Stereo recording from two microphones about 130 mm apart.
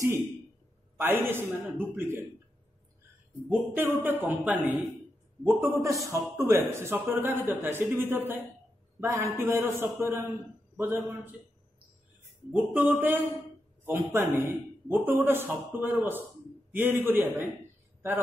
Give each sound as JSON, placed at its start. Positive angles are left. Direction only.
{"t": 0.9, "sound": "speech", "side_deg": -15}
{"t": 3.4, "sound": "a man's voice", "side_deg": -15}
{"t": 12.5, "sound": "speech", "side_deg": -15}